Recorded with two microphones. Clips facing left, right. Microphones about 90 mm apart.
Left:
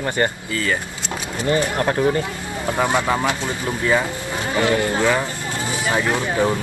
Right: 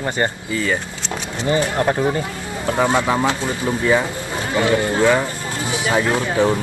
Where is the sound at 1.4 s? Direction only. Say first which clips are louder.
Right 1 dB; 20° right (ahead or behind).